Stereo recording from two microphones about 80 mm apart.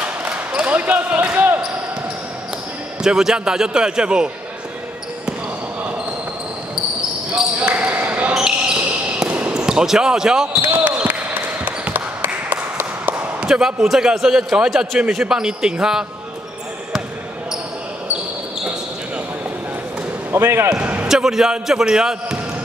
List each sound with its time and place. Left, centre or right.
0.0 s basketball bounce: centre
3.0 s a man's voice: centre
7.5 s basketball bounce: centre
10.6 s basketball bounce: right
11.1 s a sound: centre
13.5 s a man's voice: centre
20.2 s speech: right
20.7 s a sound: centre
21.1 s speech: centre